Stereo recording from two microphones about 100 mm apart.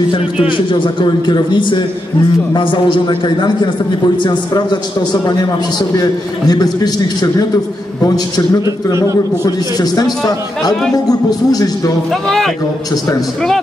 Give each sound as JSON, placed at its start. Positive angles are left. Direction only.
{"t": 0.7, "sound": "a man's voice", "side_deg": 55}
{"t": 6.5, "sound": "a man's voice", "side_deg": 40}
{"t": 8.8, "sound": "a man's voice", "side_deg": 40}
{"t": 12.1, "sound": "a man's voice", "side_deg": 5}